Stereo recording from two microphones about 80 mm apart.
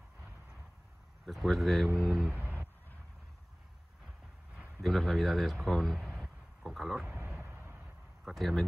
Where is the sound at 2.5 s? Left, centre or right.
Left.